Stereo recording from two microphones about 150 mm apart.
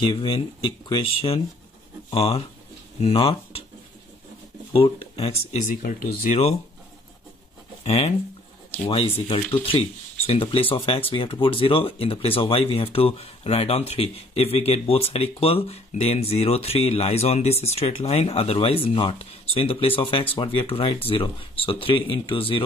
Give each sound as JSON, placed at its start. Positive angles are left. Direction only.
{"t": 0.0, "sound": "speech", "side_deg": 35}
{"t": 5.1, "sound": "speech", "side_deg": 40}
{"t": 5.8, "sound": "speech", "side_deg": 55}
{"t": 7.8, "sound": "speech", "side_deg": 45}